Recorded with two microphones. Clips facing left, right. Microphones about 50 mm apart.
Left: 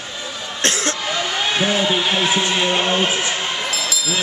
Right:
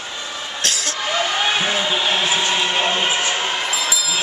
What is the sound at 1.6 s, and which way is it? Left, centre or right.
Speech, centre.